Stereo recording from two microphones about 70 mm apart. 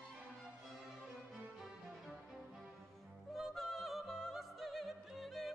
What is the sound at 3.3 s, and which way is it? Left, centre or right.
Music, centre.